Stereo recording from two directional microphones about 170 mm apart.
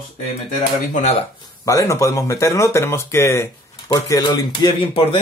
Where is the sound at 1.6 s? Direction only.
20° left (ahead or behind).